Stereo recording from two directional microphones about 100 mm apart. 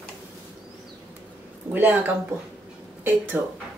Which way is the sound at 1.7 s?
20° right (ahead or behind).